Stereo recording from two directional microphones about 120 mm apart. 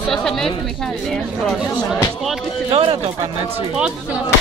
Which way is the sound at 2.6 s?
50° right (ahead or behind).